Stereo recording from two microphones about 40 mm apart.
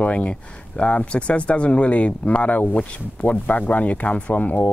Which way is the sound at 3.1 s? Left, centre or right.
Left.